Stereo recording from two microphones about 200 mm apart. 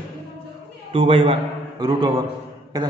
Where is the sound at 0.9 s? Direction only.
25° right (ahead or behind).